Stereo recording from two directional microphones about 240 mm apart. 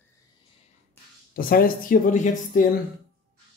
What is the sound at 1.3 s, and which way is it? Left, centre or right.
Speech, left.